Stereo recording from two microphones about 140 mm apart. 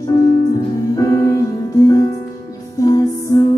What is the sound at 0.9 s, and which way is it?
Music, 25° left (ahead or behind).